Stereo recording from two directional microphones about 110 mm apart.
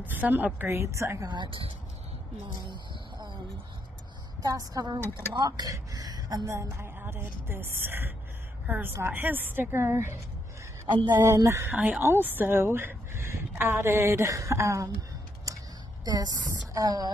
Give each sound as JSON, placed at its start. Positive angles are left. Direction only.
{"t": 0.0, "sound": "a woman's voice", "side_deg": -15}
{"t": 1.3, "sound": "speech", "side_deg": -50}
{"t": 2.6, "sound": "a sound", "side_deg": -45}
{"t": 4.4, "sound": "a woman's voice", "side_deg": -35}
{"t": 10.9, "sound": "speech", "side_deg": -45}
{"t": 11.2, "sound": "speech", "side_deg": -25}
{"t": 11.7, "sound": "speech", "side_deg": -15}
{"t": 15.5, "sound": "a sound", "side_deg": -30}
{"t": 16.1, "sound": "a woman's voice", "side_deg": -35}